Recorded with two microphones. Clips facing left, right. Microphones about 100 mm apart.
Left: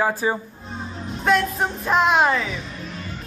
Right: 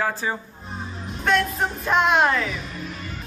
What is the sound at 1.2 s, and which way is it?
Music, 5° left (ahead or behind).